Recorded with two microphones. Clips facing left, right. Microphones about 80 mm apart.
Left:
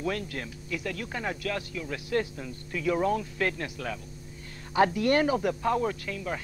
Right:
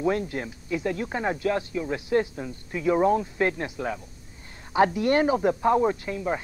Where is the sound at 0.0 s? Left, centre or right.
Right.